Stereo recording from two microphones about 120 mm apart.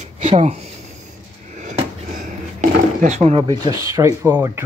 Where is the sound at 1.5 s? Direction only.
90° right.